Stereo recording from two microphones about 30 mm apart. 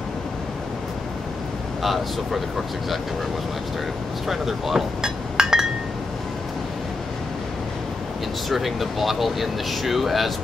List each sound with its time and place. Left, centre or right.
1.8 s speech: centre
4.3 s speech: centre
4.7 s chink: right
8.5 s speech: centre